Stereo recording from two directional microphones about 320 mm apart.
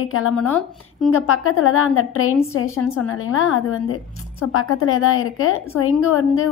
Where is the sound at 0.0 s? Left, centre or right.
Left.